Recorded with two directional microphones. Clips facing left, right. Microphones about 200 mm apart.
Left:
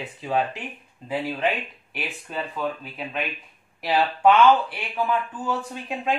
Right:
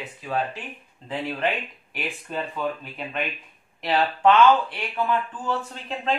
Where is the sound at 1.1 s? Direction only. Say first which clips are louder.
Left 1 dB; 5° left (ahead or behind).